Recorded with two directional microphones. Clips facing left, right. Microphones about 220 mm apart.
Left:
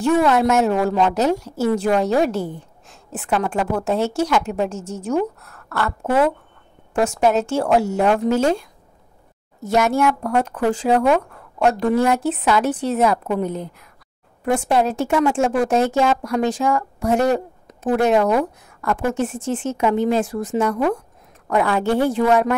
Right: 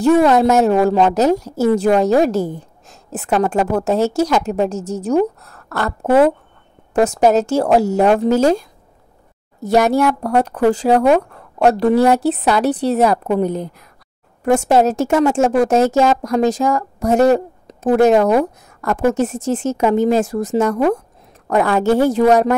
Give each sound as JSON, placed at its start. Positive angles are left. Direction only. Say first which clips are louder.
{"t": 0.0, "sound": "a woman's voice", "louder": "right 5 dB", "side_deg": -40}